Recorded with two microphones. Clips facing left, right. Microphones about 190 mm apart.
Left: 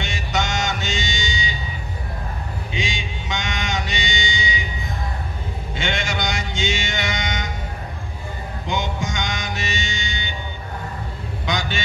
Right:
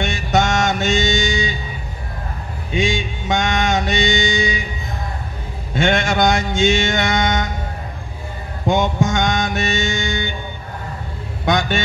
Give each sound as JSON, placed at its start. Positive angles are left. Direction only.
{"t": 0.0, "sound": "music", "side_deg": -50}
{"t": 2.7, "sound": "music", "side_deg": -55}
{"t": 5.8, "sound": "music", "side_deg": -50}
{"t": 8.6, "sound": "music", "side_deg": -50}
{"t": 11.4, "sound": "a sound", "side_deg": -50}